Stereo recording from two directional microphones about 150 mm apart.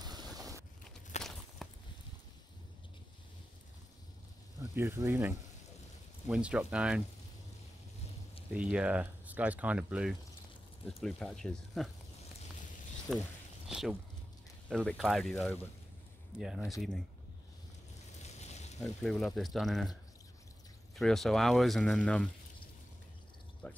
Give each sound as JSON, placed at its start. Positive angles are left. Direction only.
{"t": 0.0, "sound": "a sound", "side_deg": -25}
{"t": 1.1, "sound": "walk", "side_deg": 50}
{"t": 1.6, "sound": "a sound", "side_deg": 0}
{"t": 4.7, "sound": "speech", "side_deg": -20}
{"t": 6.2, "sound": "speech", "side_deg": -5}
{"t": 8.5, "sound": "speech", "side_deg": -10}
{"t": 13.1, "sound": "speech", "side_deg": 15}
{"t": 13.7, "sound": "speech", "side_deg": 0}
{"t": 18.2, "sound": "a sound", "side_deg": 45}
{"t": 18.8, "sound": "speech", "side_deg": 0}
{"t": 23.6, "sound": "speech", "side_deg": 10}